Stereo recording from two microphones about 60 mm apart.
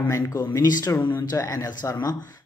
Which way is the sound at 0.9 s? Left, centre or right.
Left.